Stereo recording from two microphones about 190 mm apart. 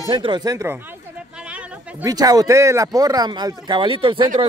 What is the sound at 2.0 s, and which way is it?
Speech, 20° right (ahead or behind).